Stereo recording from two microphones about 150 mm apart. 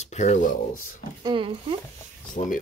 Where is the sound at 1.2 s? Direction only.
35° right (ahead or behind).